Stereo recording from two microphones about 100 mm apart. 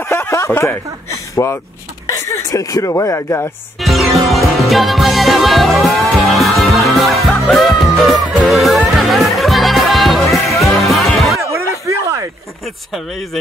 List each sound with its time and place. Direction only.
0.0 s a sound: 25° left (ahead or behind)
0.5 s speech: 25° left (ahead or behind)
3.8 s music: centre (ahead or behind)
10.3 s music: 30° left (ahead or behind)
10.9 s music: centre (ahead or behind)
11.5 s a sound: 30° right (ahead or behind)